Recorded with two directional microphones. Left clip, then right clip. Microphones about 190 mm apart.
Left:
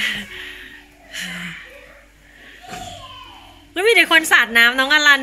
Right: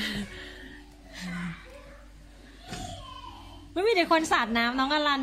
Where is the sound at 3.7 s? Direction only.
15° right (ahead or behind).